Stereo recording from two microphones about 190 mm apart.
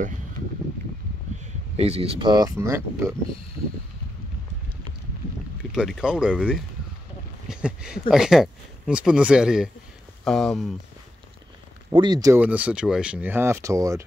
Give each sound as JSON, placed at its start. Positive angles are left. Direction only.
{"t": 1.4, "sound": "speech", "side_deg": -35}
{"t": 5.8, "sound": "speech", "side_deg": -5}
{"t": 11.9, "sound": "speech", "side_deg": -20}
{"t": 12.4, "sound": "speech", "side_deg": -5}